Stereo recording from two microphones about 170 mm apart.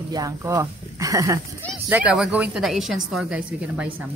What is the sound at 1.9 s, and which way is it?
A woman's voice, 5° right (ahead or behind).